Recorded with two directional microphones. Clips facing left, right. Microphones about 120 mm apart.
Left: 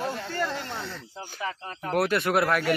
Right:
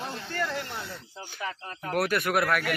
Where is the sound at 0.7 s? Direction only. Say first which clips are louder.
Left 2 dB; 10° right (ahead or behind).